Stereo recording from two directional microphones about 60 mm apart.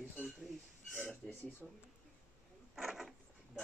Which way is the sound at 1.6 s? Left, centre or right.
Centre.